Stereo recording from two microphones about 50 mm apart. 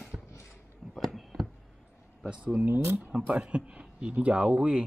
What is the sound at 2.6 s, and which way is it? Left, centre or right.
Speech, right.